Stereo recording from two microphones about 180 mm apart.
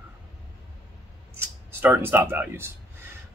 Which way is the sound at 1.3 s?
10° right (ahead or behind).